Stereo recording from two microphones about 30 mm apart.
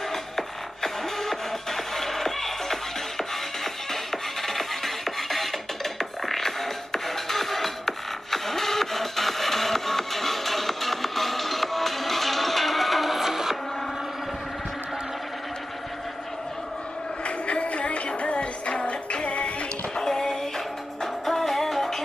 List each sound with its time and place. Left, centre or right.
0.1 s music: centre
17.2 s music: left
20.0 s music: left
20.5 s music: centre